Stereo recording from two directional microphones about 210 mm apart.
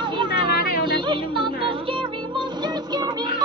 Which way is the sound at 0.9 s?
25° right (ahead or behind).